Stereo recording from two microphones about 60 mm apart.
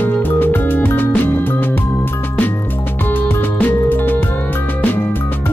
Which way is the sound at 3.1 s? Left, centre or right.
Left.